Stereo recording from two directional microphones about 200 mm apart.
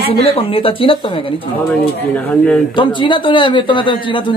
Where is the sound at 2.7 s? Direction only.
25° left (ahead or behind).